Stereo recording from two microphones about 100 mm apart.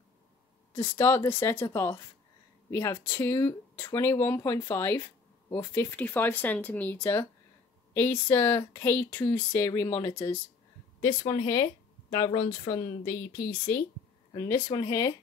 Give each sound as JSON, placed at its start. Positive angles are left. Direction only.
{"t": 0.7, "sound": "speech", "side_deg": 25}
{"t": 14.3, "sound": "speech", "side_deg": 45}